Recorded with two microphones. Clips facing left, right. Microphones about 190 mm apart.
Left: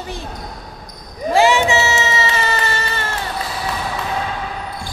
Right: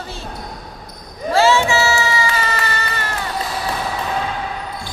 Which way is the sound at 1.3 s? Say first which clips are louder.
Left 1 dB; 15° left (ahead or behind).